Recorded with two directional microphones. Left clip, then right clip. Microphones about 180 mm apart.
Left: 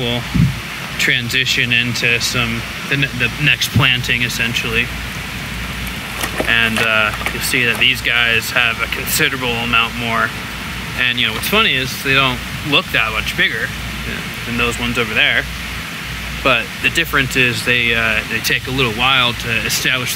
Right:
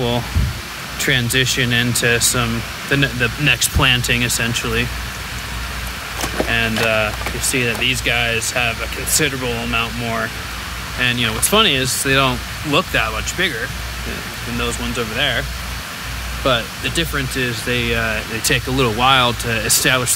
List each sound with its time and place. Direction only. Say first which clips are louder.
0.9 s speech: left 2 dB; 15° right (ahead or behind)
6.3 s speech: left 4 dB; 10° right (ahead or behind)
11.5 s speech: right 1 dB; 25° right (ahead or behind); by 13.5 s 10° right (ahead or behind)
14.6 s speech: left 5 dB; centre (ahead or behind)
16.4 s speech: left 4 dB; centre (ahead or behind)
18.4 s speech: left 1 dB; 25° right (ahead or behind)